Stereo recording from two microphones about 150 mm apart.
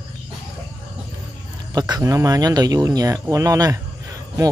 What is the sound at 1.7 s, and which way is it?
Speech, 25° right (ahead or behind).